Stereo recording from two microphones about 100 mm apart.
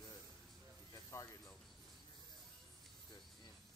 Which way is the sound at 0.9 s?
35° left (ahead or behind).